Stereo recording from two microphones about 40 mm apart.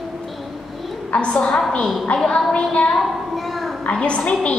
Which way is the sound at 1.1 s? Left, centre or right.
Left.